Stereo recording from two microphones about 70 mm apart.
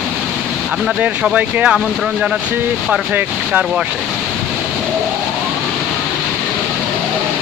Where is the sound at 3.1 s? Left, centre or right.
Centre.